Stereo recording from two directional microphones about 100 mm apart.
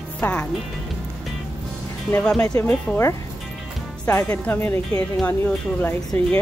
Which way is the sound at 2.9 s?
Centre (ahead or behind).